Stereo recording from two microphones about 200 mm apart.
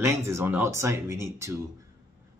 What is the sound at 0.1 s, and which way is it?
A man's voice, 10° right (ahead or behind).